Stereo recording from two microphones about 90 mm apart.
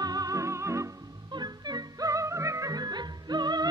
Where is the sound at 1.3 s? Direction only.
50° right (ahead or behind).